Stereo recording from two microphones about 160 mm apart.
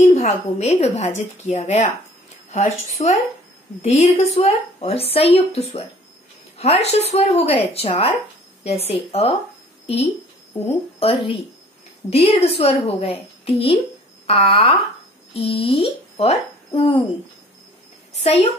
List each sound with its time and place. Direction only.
0.1 s a woman's voice: 45° left (ahead or behind)
11.0 s speech: 35° left (ahead or behind)
18.2 s speech: 40° left (ahead or behind)